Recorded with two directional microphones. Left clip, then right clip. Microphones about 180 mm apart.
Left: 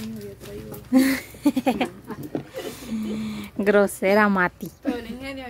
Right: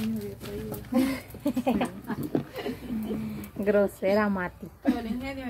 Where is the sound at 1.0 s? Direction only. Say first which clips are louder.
Left 8 dB; 60° left (ahead or behind).